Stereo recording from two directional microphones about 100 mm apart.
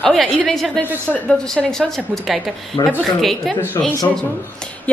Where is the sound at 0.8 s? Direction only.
20° right (ahead or behind).